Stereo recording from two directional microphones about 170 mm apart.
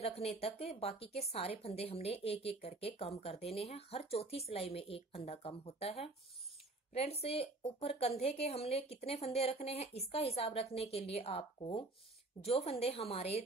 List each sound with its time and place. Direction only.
0.0 s a woman's voice: 35° left (ahead or behind)